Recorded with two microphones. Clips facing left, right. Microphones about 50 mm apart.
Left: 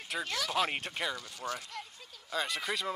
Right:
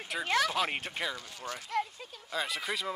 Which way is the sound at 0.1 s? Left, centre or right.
Centre.